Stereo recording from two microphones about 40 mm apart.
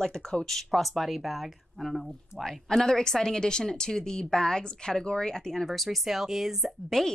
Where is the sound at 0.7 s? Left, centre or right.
Centre.